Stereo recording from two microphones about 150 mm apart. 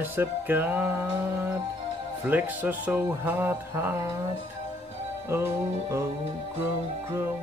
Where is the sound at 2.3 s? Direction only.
10° right (ahead or behind).